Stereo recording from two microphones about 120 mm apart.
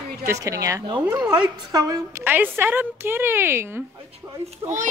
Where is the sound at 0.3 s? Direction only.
30° right (ahead or behind).